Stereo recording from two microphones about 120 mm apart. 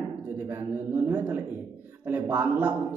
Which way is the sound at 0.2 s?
20° right (ahead or behind).